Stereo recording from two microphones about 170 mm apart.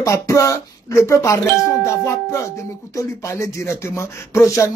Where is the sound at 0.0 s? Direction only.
20° left (ahead or behind).